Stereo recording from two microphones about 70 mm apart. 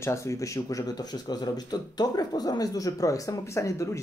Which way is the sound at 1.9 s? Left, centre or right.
Left.